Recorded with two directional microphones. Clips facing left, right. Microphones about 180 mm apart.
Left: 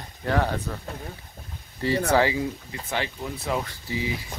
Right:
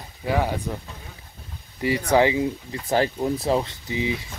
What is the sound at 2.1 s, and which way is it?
Speech, 20° right (ahead or behind).